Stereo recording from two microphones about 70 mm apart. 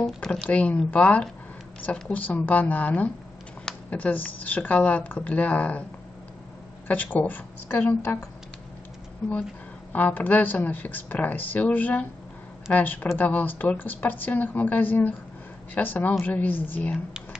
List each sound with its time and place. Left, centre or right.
0.5 s a woman's voice: centre
6.9 s a woman's voice: left
9.9 s a woman's voice: left